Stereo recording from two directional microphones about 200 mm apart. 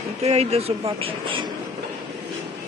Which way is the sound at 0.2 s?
30° right (ahead or behind).